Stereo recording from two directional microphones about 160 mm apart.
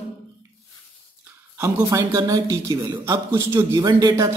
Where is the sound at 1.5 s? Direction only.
15° right (ahead or behind).